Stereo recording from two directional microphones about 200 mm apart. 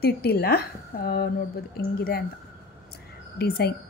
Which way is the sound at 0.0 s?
50° left (ahead or behind).